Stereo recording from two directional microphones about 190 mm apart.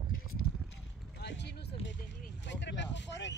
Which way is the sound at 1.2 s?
65° left (ahead or behind).